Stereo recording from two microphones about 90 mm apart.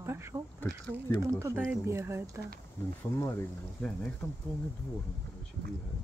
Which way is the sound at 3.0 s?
30° left (ahead or behind).